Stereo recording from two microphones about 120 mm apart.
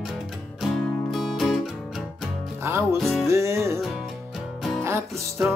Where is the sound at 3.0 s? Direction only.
Centre (ahead or behind).